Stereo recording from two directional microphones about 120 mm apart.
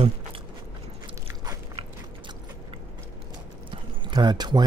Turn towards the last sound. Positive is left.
turn(degrees=-35)  # may be behind; listen again after turning